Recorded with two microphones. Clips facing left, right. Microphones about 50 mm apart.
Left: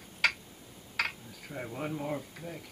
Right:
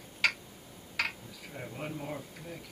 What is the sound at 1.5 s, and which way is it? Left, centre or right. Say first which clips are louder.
Speech: left 4 dB; centre.